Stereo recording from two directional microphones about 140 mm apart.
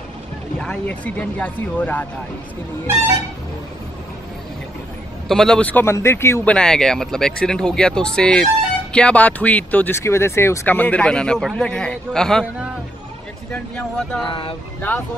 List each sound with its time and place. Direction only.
0.6 s speech: 10° left (ahead or behind)
5.3 s a man's voice: 5° left (ahead or behind)
13.5 s speech: 5° left (ahead or behind)
14.2 s speech: 35° left (ahead or behind)